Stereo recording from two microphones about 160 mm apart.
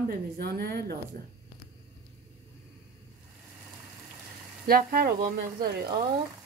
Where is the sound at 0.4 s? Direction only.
75° right (ahead or behind).